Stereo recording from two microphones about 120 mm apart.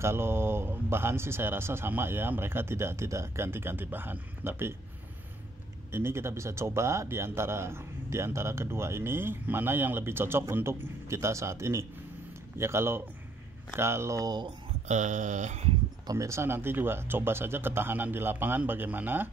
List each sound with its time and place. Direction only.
0.0 s speech: 20° right (ahead or behind)
5.9 s speech: 20° right (ahead or behind)
14.9 s speech: 90° right
16.1 s speech: 25° right (ahead or behind)